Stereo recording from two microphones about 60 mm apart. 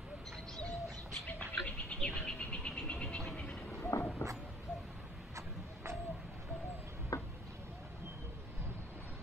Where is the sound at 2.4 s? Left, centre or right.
Left.